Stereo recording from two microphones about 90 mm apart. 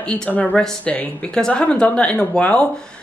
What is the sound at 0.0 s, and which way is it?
Speech, 10° left (ahead or behind).